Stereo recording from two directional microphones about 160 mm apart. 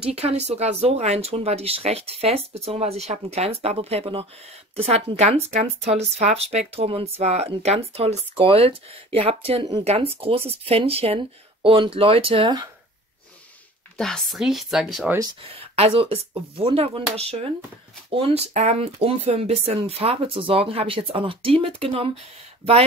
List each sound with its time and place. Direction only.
0.0 s speech: 40° right (ahead or behind)
13.9 s speech: 5° left (ahead or behind)
15.4 s speech: 40° right (ahead or behind)